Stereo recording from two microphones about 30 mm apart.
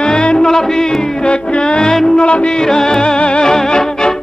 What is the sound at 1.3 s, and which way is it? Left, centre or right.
Music, left.